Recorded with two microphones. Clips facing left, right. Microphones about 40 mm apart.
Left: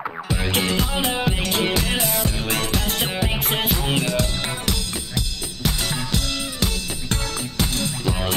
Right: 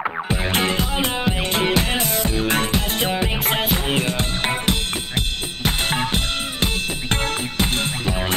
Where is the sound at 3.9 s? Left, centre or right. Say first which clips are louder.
Even; right.